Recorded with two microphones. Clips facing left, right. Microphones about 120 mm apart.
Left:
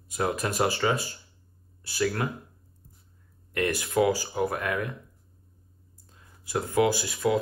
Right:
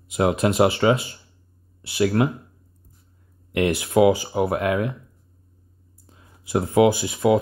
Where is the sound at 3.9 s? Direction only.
60° right (ahead or behind).